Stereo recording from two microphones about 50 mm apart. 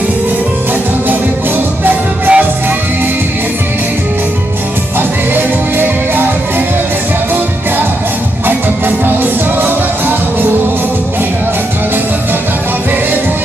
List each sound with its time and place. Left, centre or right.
1.9 s music: right
4.9 s music: right
8.5 s music: right